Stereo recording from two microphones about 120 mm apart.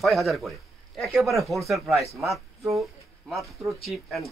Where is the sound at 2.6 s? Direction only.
25° right (ahead or behind).